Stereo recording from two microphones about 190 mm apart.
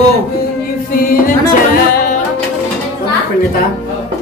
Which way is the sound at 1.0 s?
50° left (ahead or behind).